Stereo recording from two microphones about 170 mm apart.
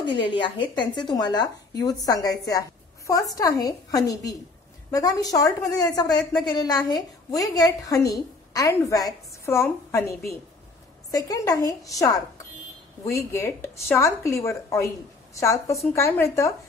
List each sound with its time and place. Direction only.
0.0 s a woman's voice: 30° left (ahead or behind)